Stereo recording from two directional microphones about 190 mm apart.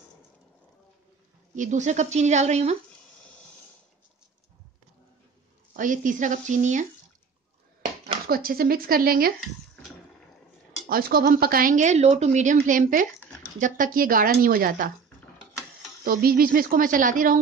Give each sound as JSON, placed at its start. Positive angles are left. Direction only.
{"t": 1.5, "sound": "speech", "side_deg": -40}
{"t": 5.7, "sound": "speech", "side_deg": -45}
{"t": 8.3, "sound": "a woman's voice", "side_deg": -50}
{"t": 10.9, "sound": "a woman's voice", "side_deg": -50}
{"t": 16.0, "sound": "a woman's voice", "side_deg": -50}